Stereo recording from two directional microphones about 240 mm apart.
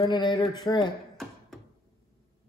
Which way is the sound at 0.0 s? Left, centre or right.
Centre.